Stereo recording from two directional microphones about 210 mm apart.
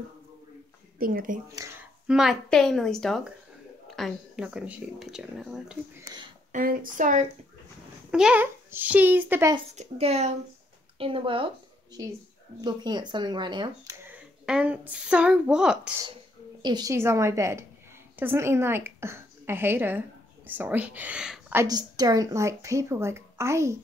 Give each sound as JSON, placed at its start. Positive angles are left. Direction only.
{"t": 0.9, "sound": "speech", "side_deg": -45}
{"t": 1.5, "sound": "speech", "side_deg": -15}
{"t": 2.0, "sound": "speech", "side_deg": 0}
{"t": 6.5, "sound": "speech", "side_deg": -40}
{"t": 8.1, "sound": "a woman's voice", "side_deg": -5}
{"t": 9.8, "sound": "speech", "side_deg": -30}
{"t": 14.4, "sound": "speech", "side_deg": -5}
{"t": 16.6, "sound": "a woman's voice", "side_deg": -20}